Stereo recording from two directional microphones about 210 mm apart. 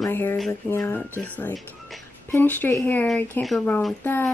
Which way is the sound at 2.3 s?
10° left (ahead or behind).